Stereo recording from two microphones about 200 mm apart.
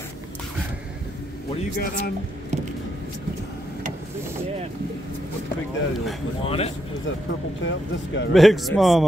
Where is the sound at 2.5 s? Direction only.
35° right (ahead or behind).